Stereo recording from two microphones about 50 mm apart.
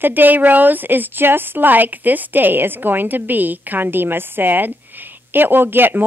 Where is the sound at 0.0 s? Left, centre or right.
Right.